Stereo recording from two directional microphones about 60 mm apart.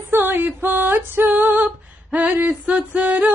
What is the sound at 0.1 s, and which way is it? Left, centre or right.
Female singing, right.